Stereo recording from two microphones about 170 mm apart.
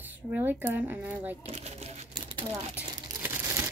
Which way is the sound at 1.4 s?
40° right (ahead or behind).